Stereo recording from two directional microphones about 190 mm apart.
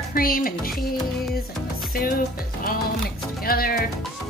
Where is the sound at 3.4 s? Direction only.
50° left (ahead or behind).